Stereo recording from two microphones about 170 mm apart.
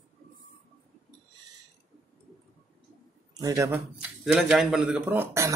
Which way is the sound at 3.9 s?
5° right (ahead or behind).